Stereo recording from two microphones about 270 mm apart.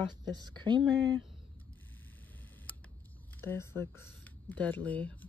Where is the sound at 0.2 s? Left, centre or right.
Centre.